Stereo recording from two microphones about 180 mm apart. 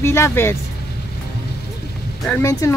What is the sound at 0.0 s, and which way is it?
Speech, 15° left (ahead or behind).